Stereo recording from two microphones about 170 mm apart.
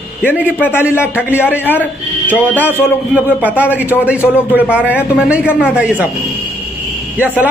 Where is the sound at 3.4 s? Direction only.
10° right (ahead or behind).